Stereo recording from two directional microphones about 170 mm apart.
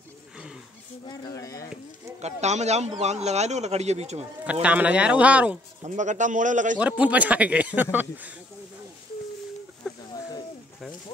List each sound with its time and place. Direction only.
1.0 s speech: 20° left (ahead or behind)
2.2 s speech: 40° right (ahead or behind)
4.5 s speech: 5° right (ahead or behind)
5.9 s a man's voice: 45° right (ahead or behind)
6.8 s speech: 10° right (ahead or behind)
9.8 s a sound: 5° right (ahead or behind)